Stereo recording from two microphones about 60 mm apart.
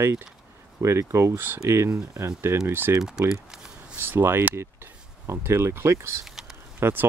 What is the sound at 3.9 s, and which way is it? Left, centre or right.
Speech, right.